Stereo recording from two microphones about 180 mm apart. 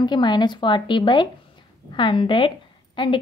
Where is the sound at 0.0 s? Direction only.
25° left (ahead or behind).